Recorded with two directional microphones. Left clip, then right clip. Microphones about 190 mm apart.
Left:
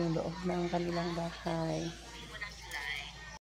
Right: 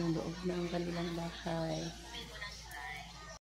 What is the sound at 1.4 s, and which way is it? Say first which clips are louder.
Speech: left 2 dB; 25° left (ahead or behind).